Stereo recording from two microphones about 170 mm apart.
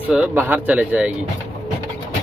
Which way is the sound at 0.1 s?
10° right (ahead or behind).